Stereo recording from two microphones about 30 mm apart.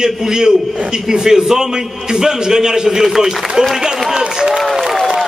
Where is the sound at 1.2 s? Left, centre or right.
Centre.